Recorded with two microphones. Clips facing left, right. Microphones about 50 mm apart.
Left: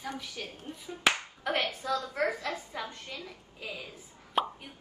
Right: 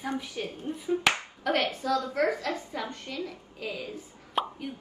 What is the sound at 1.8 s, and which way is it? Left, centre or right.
Speech, centre.